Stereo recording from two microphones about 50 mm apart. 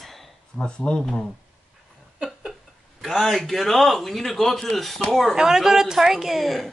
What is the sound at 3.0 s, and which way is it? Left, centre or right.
A man's voice, centre.